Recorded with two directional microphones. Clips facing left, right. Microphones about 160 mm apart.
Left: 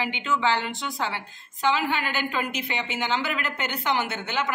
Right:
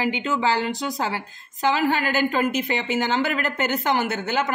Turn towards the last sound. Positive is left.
turn(degrees=-45)  # may be behind; listen again after turning